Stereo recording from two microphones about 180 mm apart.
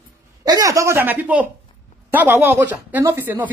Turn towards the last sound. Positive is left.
turn(degrees=-10)  # may be behind; listen again after turning